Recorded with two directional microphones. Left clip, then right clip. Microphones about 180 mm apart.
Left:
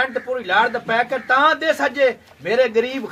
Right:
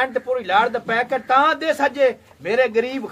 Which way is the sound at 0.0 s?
25° right (ahead or behind).